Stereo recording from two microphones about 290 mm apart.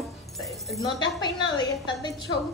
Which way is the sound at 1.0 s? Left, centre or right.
Centre.